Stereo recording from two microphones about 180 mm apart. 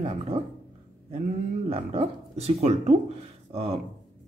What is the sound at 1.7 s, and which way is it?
Speech, 30° right (ahead or behind).